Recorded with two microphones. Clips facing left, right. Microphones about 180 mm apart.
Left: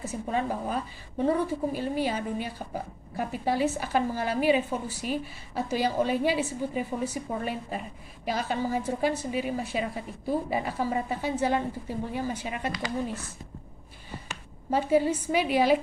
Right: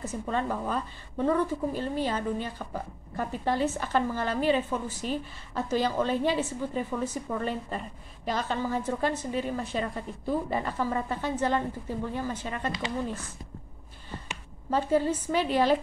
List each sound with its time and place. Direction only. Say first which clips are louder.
0.0 s a woman's voice: left 1 dB; 10° left (ahead or behind)
14.7 s a woman's voice: left 2 dB; 10° left (ahead or behind)